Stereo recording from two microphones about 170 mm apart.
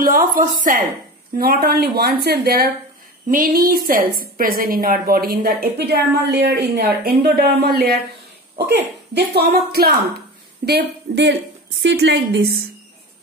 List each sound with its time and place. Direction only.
0.0 s a woman's voice: 55° right (ahead or behind)
3.3 s a woman's voice: 55° right (ahead or behind); by 12.5 s 85° right